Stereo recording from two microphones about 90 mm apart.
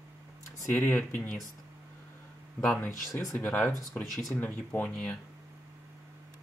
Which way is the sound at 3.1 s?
30° left (ahead or behind).